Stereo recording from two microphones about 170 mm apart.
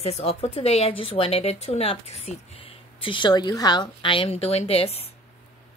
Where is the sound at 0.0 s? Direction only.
35° left (ahead or behind).